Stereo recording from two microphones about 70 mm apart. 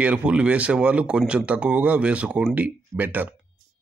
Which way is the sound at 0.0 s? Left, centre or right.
Centre.